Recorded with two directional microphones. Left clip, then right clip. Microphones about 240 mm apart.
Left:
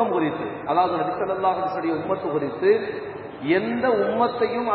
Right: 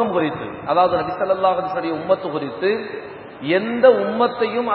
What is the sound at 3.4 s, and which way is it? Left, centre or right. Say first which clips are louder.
Speech: right 8 dB; right.